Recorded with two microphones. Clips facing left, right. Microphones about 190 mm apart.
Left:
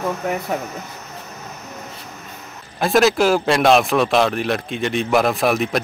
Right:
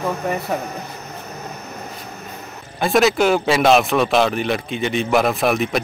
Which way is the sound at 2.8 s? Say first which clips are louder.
Even; centre (ahead or behind).